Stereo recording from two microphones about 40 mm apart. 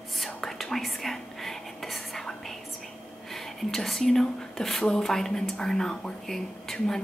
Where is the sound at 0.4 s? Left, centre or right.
Centre.